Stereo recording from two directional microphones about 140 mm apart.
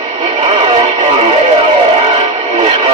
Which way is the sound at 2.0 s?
45° right (ahead or behind).